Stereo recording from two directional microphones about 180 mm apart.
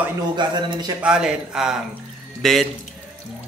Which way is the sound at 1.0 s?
5° right (ahead or behind).